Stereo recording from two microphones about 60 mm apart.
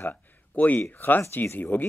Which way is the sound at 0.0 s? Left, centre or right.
Left.